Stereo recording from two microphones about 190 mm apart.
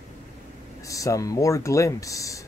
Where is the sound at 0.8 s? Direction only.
15° left (ahead or behind).